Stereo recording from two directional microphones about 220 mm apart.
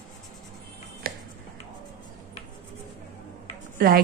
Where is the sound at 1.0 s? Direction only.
45° right (ahead or behind).